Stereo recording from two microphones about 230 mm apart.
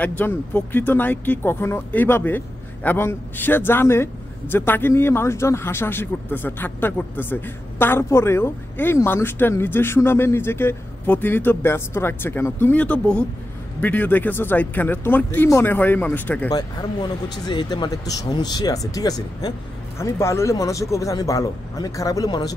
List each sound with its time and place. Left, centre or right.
0.0 s speech: centre